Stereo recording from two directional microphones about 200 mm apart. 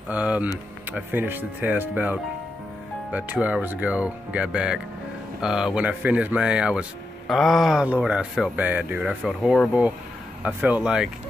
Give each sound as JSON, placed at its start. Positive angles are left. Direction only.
{"t": 0.1, "sound": "speech", "side_deg": -5}